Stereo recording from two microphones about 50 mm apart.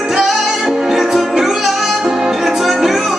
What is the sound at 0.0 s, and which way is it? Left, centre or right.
Music, centre.